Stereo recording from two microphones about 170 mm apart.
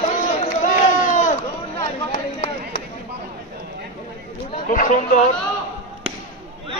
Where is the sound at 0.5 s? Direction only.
45° left (ahead or behind).